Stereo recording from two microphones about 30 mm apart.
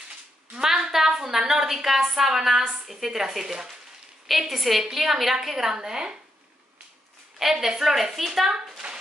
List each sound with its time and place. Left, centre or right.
0.7 s a woman's voice: centre
5.8 s speech: right
7.3 s a woman's voice: centre
8.8 s a sound: right